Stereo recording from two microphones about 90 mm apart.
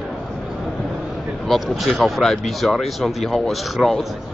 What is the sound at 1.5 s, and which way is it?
Speech, centre (ahead or behind).